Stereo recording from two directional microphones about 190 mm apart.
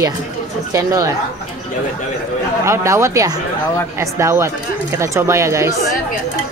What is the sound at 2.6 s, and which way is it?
Speech, 15° right (ahead or behind).